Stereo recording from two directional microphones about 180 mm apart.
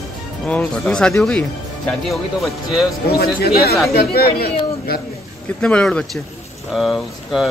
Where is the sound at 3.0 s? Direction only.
60° left (ahead or behind).